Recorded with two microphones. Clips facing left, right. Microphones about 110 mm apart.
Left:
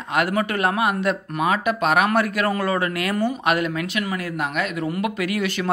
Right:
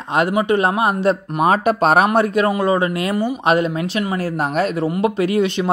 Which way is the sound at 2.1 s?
25° right (ahead or behind).